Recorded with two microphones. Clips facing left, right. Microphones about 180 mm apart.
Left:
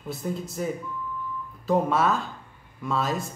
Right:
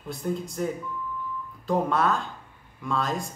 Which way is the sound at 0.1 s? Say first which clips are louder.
Right 1 dB; 5° left (ahead or behind).